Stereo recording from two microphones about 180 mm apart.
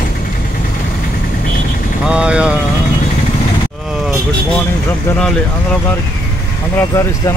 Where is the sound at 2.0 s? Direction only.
5° right (ahead or behind).